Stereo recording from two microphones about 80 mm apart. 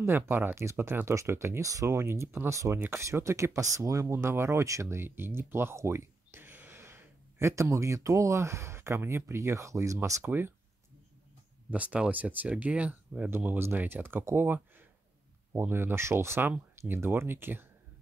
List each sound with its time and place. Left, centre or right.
0.0 s speech: right
11.7 s speech: centre